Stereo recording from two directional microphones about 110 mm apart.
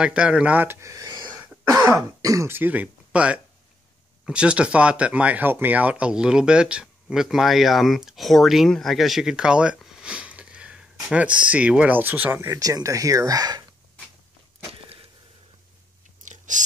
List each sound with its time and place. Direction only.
0.0 s speech: 10° right (ahead or behind); by 1.3 s 35° right (ahead or behind)
1.3 s throat clearing: 15° right (ahead or behind)
1.7 s speech: 25° right (ahead or behind)
12.5 s speech: 30° right (ahead or behind)
14.7 s a sound: 60° right (ahead or behind)